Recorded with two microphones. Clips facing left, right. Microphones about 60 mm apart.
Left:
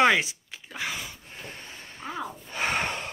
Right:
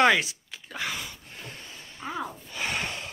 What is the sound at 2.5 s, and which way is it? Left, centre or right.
Gasp, left.